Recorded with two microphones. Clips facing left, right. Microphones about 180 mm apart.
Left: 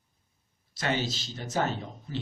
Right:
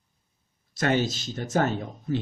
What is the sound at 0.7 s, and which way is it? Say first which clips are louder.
A man's voice: right 6 dB; 50° right (ahead or behind).